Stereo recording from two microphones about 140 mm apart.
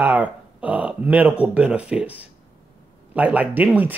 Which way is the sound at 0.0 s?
10° right (ahead or behind).